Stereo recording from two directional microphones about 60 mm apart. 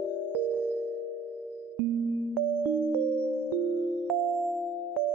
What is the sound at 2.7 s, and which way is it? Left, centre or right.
Electric piano, right.